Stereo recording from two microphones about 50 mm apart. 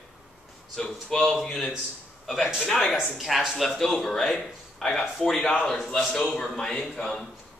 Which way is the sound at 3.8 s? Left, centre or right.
Centre.